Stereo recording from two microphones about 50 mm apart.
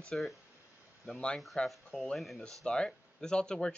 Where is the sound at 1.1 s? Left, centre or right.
Centre.